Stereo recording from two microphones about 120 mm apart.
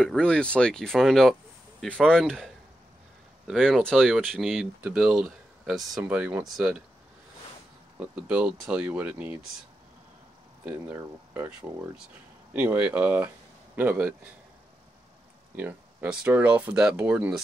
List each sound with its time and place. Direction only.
0.0 s speech: 5° left (ahead or behind)
8.0 s speech: 10° right (ahead or behind)
10.6 s speech: 15° right (ahead or behind)
15.5 s speech: 15° right (ahead or behind)